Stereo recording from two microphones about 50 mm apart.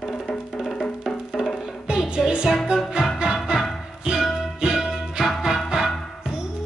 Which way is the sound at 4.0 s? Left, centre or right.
Centre.